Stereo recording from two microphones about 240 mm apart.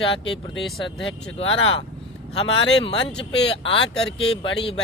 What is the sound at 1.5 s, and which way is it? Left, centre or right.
Speech, left.